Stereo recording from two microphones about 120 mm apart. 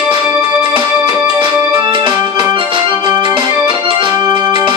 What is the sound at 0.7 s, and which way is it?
Music, 35° right (ahead or behind).